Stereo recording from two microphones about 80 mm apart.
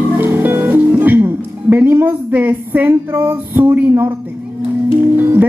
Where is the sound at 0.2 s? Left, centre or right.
Right.